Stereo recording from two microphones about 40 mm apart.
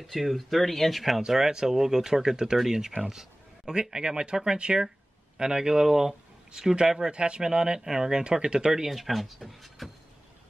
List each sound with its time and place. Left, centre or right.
0.0 s speech: centre
1.2 s speech: centre
7.1 s speech: right
8.2 s speech: right
8.9 s speech: centre